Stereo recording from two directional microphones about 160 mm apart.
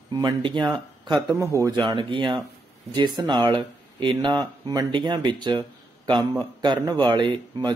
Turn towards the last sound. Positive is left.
turn(degrees=-30)  # may be behind; listen again after turning